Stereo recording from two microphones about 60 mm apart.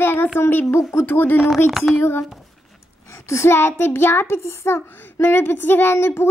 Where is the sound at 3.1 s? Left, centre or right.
Left.